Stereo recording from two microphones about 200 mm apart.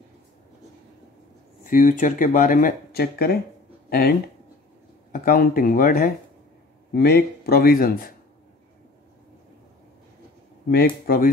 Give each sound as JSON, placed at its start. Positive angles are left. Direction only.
{"t": 1.6, "sound": "speech", "side_deg": 40}
{"t": 5.1, "sound": "speech", "side_deg": 45}
{"t": 10.7, "sound": "speech", "side_deg": 50}